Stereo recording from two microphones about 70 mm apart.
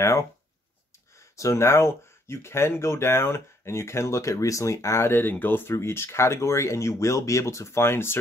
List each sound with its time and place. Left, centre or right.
1.3 s speech: left